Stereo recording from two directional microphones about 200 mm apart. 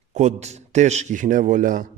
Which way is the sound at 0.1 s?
35° right (ahead or behind).